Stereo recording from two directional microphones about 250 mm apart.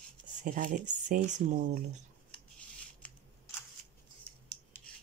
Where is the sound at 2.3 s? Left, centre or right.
Centre.